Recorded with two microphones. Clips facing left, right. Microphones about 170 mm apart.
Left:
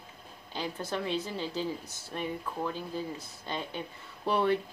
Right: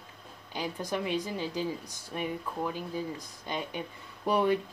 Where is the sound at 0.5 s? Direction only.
15° right (ahead or behind).